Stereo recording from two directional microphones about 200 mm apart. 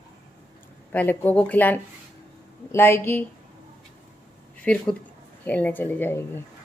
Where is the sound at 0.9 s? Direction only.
10° left (ahead or behind).